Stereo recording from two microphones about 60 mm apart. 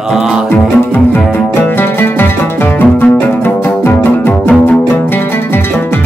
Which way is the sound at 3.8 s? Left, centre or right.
Left.